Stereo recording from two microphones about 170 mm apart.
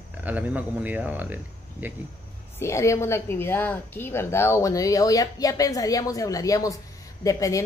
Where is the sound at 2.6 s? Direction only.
15° left (ahead or behind).